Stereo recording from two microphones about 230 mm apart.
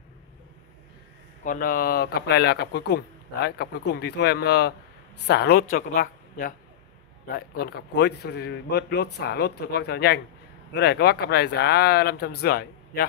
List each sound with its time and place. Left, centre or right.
1.4 s a man's voice: left